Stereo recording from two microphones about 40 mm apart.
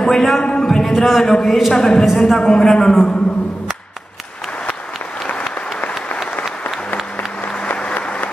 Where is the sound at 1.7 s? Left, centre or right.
Left.